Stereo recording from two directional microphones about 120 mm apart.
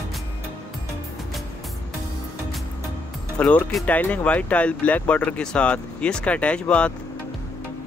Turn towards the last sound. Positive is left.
turn(degrees=10)  # may be behind; listen again after turning